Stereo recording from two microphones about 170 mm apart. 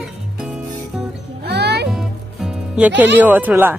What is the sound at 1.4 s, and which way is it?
Music, 75° right (ahead or behind).